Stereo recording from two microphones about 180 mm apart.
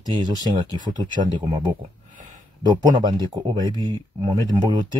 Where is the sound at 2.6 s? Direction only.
25° right (ahead or behind).